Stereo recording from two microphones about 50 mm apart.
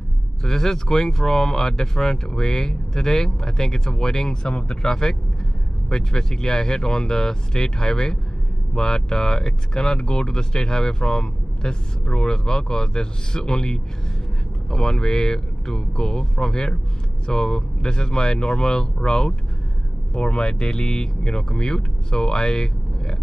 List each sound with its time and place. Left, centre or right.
0.4 s speech: centre